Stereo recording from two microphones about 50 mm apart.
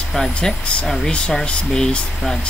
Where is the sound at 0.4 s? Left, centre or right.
Left.